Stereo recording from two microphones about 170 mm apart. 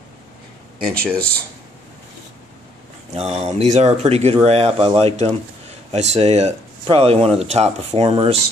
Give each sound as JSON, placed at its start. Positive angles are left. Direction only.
{"t": 0.8, "sound": "speech", "side_deg": 5}
{"t": 3.1, "sound": "speech", "side_deg": -40}